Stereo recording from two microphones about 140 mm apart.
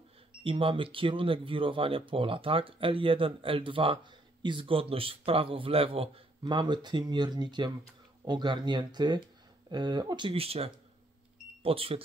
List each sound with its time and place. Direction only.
0.4 s speech: 40° right (ahead or behind)